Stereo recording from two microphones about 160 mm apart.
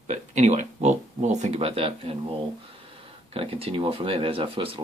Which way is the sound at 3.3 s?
35° right (ahead or behind).